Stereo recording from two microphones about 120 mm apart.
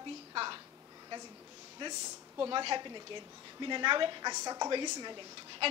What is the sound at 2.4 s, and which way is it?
A woman's voice, 40° right (ahead or behind).